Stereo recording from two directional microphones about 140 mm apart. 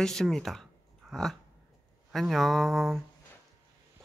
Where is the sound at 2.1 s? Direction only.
Centre (ahead or behind).